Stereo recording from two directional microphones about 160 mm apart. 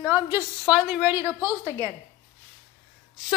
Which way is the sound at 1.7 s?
10° left (ahead or behind).